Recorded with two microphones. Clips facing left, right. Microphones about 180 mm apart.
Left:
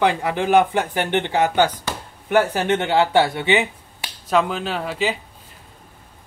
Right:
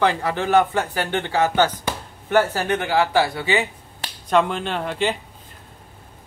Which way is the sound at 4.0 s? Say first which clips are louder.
Right 1 dB; 5° left (ahead or behind).